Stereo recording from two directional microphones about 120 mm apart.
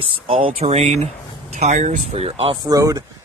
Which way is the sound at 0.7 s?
65° right (ahead or behind).